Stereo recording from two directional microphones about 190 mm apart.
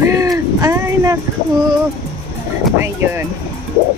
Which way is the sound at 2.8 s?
10° right (ahead or behind).